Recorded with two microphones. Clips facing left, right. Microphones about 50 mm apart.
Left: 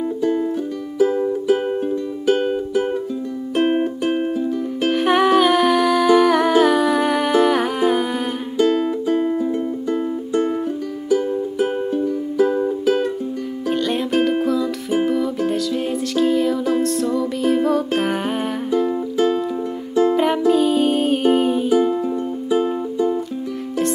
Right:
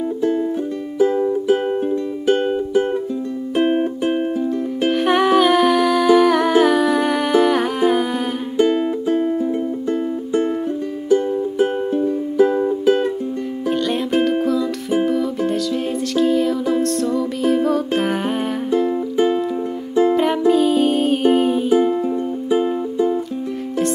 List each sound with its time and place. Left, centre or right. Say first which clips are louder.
0.2 s music: right 1 dB; centre
3.6 s music: even; centre
8.5 s music: right 1 dB; centre
9.0 s music: right 1 dB; centre
13.7 s music: even; centre
19.1 s music: right 1 dB; centre
20.2 s music: right 1 dB; centre